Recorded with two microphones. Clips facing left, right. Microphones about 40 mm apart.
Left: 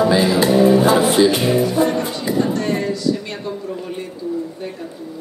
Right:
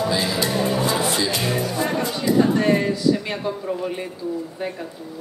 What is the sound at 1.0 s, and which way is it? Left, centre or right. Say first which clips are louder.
Music: left 8 dB; centre.